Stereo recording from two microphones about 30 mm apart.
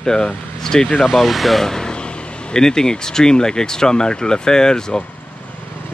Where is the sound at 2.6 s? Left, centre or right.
Left.